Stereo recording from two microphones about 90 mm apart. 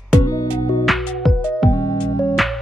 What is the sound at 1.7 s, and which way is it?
Music, 35° left (ahead or behind).